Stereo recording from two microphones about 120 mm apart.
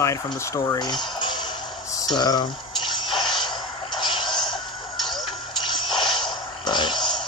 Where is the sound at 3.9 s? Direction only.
40° left (ahead or behind).